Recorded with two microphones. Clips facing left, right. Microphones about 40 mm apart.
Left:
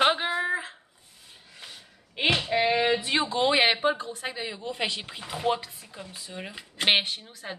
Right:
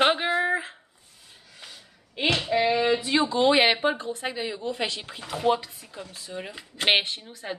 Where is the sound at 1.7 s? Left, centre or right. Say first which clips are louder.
Even; centre.